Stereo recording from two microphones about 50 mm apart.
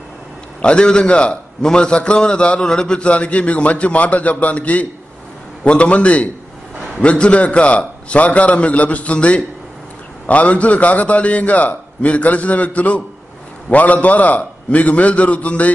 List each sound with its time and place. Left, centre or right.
0.6 s a man's voice: centre